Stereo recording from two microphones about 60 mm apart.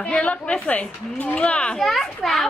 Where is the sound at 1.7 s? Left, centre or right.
Centre.